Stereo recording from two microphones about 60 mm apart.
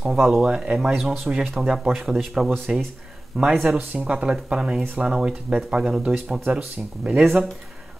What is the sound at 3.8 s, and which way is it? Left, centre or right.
Speech, right.